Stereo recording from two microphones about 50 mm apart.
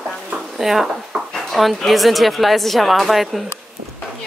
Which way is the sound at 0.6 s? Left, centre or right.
Centre.